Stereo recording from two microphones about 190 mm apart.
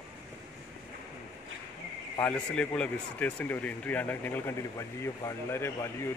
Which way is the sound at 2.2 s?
5° left (ahead or behind).